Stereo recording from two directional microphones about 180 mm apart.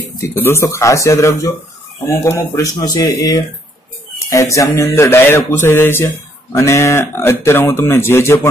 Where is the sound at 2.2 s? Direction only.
15° left (ahead or behind).